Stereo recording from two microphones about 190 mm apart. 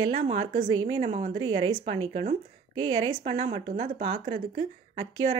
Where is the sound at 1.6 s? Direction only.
25° right (ahead or behind); by 4.6 s 45° right (ahead or behind).